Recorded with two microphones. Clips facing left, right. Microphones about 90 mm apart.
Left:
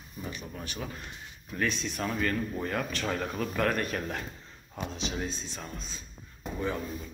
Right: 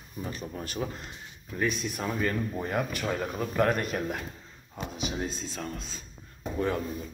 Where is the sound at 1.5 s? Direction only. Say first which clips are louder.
Right 1 dB; 10° right (ahead or behind).